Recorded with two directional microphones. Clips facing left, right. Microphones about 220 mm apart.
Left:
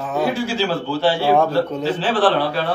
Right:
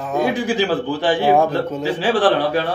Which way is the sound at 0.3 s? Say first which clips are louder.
Right 2 dB; 15° right (ahead or behind).